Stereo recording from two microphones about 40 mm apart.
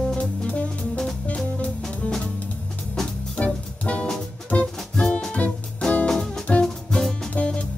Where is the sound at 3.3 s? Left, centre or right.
Left.